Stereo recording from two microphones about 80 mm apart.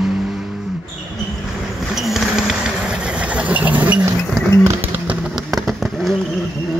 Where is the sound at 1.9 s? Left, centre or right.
Centre.